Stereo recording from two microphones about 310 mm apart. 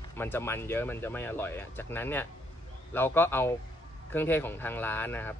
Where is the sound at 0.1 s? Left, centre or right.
Centre.